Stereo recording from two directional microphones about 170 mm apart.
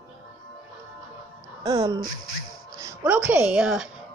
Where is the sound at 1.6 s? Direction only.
20° right (ahead or behind); by 3.9 s 5° right (ahead or behind).